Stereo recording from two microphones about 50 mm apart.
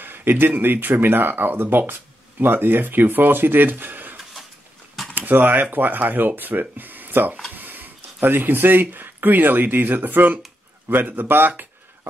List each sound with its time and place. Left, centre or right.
0.0 s speech: right